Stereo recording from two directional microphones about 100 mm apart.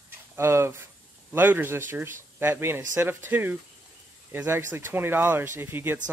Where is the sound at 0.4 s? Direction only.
25° right (ahead or behind).